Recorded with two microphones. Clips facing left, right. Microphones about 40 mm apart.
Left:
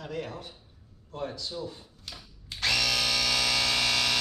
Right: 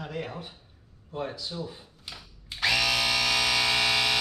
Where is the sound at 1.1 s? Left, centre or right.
Centre.